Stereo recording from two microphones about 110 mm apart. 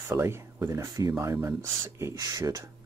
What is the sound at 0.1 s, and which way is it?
Speech, 25° right (ahead or behind).